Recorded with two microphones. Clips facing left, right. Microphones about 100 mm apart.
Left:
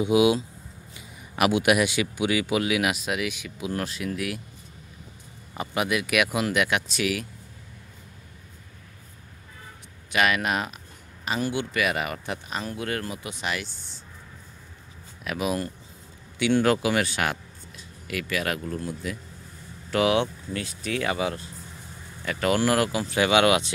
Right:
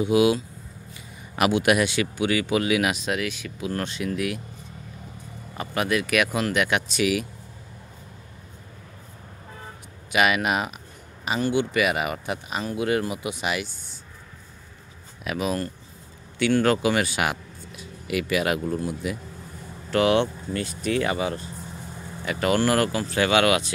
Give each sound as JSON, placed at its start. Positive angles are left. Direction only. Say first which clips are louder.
{"t": 0.0, "sound": "speech", "louder": "even", "side_deg": 15}
{"t": 1.3, "sound": "speech", "louder": "right 1 dB", "side_deg": 5}
{"t": 5.6, "sound": "speech", "louder": "right 1 dB", "side_deg": 10}
{"t": 10.1, "sound": "speech", "louder": "right 2 dB", "side_deg": -5}
{"t": 15.2, "sound": "speech", "louder": "right 1 dB", "side_deg": 5}
{"t": 19.9, "sound": "speech", "louder": "right 2 dB", "side_deg": 5}
{"t": 22.5, "sound": "speech", "louder": "right 1 dB", "side_deg": 5}